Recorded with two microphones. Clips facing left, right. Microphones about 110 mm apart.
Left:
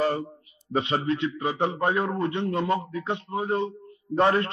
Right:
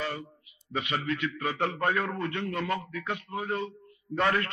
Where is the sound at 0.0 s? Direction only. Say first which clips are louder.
Left 9 dB; 40° left (ahead or behind).